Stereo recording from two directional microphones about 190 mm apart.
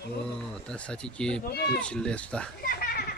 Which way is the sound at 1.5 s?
55° left (ahead or behind).